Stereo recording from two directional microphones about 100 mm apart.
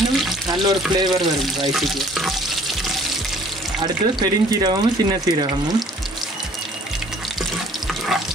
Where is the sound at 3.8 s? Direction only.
45° right (ahead or behind).